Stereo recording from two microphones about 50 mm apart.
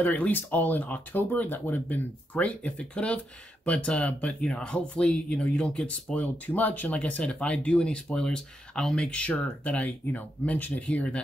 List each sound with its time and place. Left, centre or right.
0.0 s speech: left; by 6.1 s centre
6.1 s speech: left